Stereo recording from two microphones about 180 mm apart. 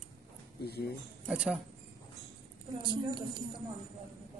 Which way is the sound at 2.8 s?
25° right (ahead or behind).